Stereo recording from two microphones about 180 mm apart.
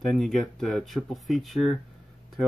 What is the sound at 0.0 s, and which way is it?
Speech, centre (ahead or behind).